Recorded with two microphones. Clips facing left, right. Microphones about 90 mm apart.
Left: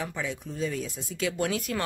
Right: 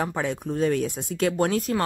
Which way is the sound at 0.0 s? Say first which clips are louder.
Right 7 dB; 55° right (ahead or behind).